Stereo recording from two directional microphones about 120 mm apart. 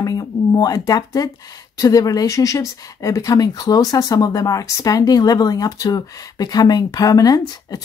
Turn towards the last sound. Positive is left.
turn(degrees=30)  # may be behind; listen again after turning